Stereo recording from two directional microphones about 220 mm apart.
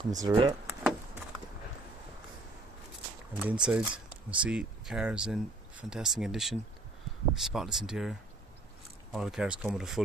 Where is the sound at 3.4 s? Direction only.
5° right (ahead or behind).